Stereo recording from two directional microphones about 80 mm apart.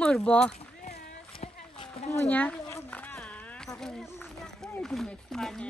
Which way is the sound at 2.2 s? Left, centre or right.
Centre.